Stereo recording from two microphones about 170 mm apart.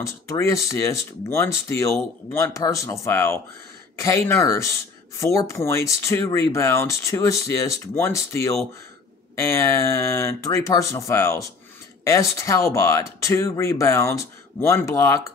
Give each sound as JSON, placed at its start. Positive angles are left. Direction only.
{"t": 0.0, "sound": "speech", "side_deg": 15}